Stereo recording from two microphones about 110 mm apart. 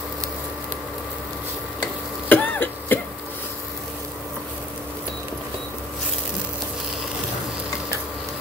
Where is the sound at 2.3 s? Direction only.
15° left (ahead or behind).